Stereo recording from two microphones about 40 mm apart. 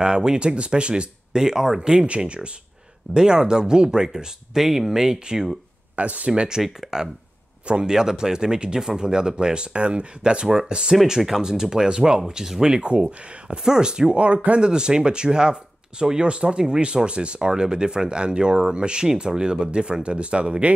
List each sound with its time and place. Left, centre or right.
0.0 s speech: centre
5.9 s speech: right
6.6 s speech: centre
14.1 s speech: right